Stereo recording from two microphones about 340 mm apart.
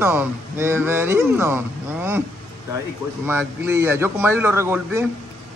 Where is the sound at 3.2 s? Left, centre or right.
Centre.